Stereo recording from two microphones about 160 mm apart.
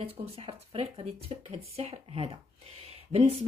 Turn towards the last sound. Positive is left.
turn(degrees=-40)  # may be behind; listen again after turning